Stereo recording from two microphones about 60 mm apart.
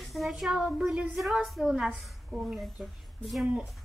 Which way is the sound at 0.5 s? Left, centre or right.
Centre.